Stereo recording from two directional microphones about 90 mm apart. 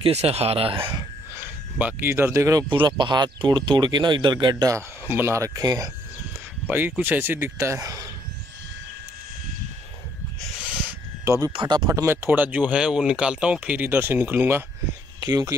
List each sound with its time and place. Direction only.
0.0 s speech: 90° right
1.8 s speech: 15° right (ahead or behind)
2.0 s speech: 25° right (ahead or behind)
2.7 s speech: 60° right (ahead or behind)
4.6 s speech: 30° right (ahead or behind)
6.7 s speech: 20° right (ahead or behind); by 8.1 s 40° right (ahead or behind)
11.2 s speech: 35° right (ahead or behind)
11.5 s speech: 55° right (ahead or behind)
12.1 s speech: 20° right (ahead or behind)
15.1 s speech: 45° right (ahead or behind)